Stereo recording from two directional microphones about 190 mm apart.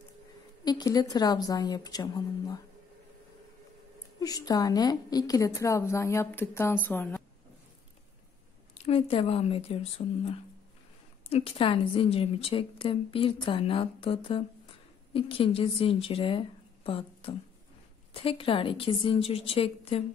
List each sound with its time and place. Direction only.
0.7 s a woman's voice: 20° left (ahead or behind)
4.2 s a woman's voice: 20° left (ahead or behind)
8.7 s a woman's voice: 35° left (ahead or behind)